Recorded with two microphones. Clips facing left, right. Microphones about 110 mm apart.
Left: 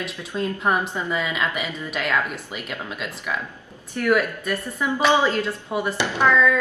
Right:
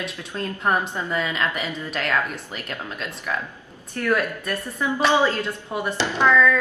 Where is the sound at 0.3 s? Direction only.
10° left (ahead or behind).